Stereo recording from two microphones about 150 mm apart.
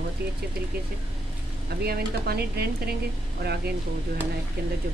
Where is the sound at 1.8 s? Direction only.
90° right.